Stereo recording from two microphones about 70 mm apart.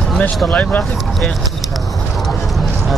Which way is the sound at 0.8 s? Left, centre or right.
Centre.